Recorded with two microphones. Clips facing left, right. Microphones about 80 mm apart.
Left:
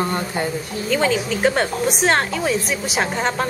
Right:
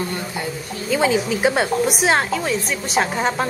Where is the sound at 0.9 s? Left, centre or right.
Centre.